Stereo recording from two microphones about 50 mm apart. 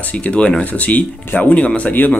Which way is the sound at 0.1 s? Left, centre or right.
Left.